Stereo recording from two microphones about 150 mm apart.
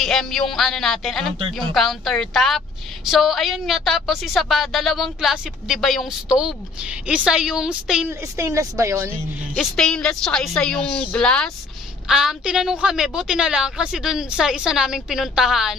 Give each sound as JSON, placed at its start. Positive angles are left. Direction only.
{"t": 0.0, "sound": "a woman's voice", "side_deg": 0}
{"t": 8.2, "sound": "a woman's voice", "side_deg": -20}
{"t": 9.6, "sound": "a woman's voice", "side_deg": 5}